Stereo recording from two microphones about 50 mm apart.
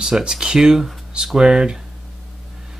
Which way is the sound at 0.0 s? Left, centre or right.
Centre.